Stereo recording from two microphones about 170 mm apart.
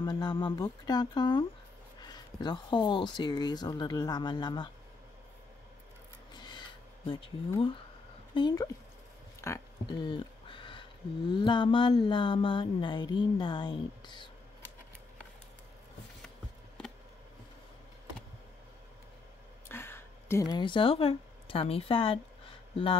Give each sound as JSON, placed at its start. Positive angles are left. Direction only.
{"t": 0.0, "sound": "speech", "side_deg": 25}
{"t": 6.3, "sound": "a sound", "side_deg": 25}
{"t": 8.4, "sound": "speech", "side_deg": 25}
{"t": 9.4, "sound": "speech", "side_deg": 15}
{"t": 9.8, "sound": "speech", "side_deg": 30}
{"t": 19.7, "sound": "a sound", "side_deg": 15}